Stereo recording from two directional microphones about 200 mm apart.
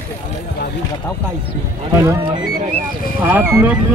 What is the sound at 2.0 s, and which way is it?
Speech, 20° right (ahead or behind).